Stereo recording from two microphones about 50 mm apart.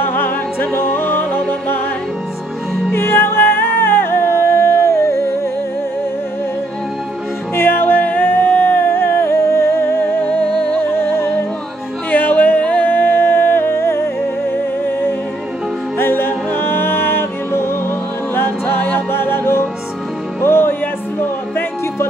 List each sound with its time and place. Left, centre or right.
0.0 s music: left
2.9 s music: left
7.5 s music: left
12.1 s music: left
14.9 s music: left
18.8 s music: left
19.1 s music: left